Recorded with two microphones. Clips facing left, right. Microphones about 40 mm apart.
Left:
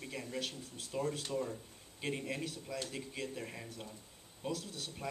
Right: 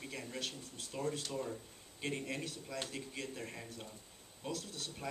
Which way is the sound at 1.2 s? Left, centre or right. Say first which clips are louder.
Left 2 dB; centre.